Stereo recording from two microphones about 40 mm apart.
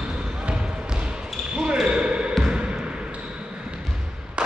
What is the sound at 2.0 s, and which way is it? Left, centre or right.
Basketball bounce, right.